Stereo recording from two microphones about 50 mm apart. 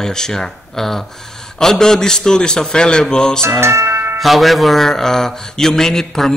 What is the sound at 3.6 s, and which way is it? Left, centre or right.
Speech, right.